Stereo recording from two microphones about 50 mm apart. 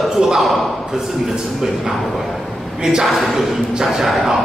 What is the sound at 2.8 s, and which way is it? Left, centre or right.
Speech, centre.